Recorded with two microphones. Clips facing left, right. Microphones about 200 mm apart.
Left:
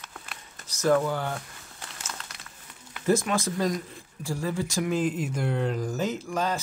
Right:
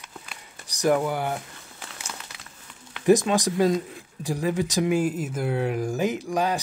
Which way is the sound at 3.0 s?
15° right (ahead or behind).